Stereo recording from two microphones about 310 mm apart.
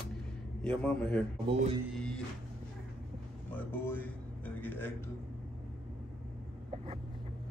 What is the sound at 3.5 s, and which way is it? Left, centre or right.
A man's voice, centre.